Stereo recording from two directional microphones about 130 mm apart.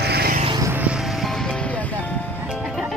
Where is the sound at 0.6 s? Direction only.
20° right (ahead or behind).